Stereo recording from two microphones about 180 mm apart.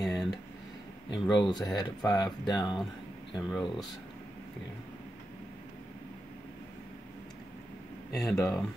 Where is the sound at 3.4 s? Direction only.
Centre (ahead or behind).